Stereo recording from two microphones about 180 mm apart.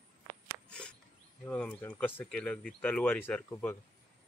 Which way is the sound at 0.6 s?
5° left (ahead or behind).